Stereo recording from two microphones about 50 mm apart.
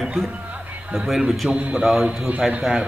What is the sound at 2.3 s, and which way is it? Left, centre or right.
Speech, right.